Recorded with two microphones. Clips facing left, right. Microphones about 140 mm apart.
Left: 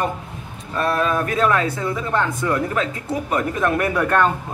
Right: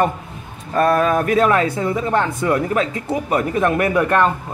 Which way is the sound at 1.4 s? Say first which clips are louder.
Right 3 dB; 20° right (ahead or behind).